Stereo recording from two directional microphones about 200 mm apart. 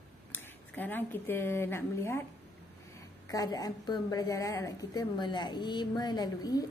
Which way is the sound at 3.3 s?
20° left (ahead or behind).